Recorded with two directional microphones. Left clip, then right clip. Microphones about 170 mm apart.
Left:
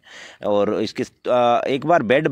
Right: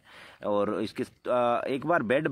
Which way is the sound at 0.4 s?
40° left (ahead or behind).